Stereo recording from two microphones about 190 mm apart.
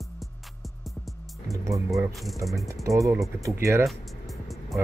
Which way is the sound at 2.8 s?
15° right (ahead or behind).